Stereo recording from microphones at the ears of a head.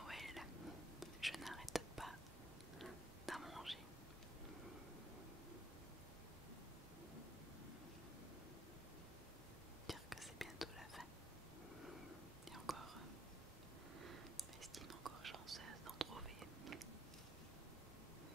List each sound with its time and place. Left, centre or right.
0.0 s whispering: centre
10.0 s whispering: centre
14.9 s whispering: right